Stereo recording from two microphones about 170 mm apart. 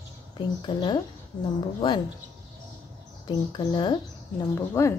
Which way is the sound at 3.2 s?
25° left (ahead or behind).